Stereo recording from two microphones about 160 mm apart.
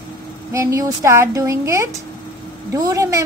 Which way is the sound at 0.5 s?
20° right (ahead or behind).